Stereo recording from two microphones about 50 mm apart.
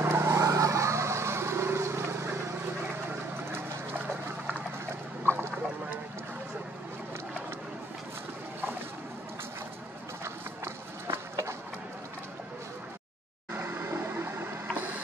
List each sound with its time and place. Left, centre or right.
0.0 s vehicle: right
10.2 s run: right
13.5 s a sound: right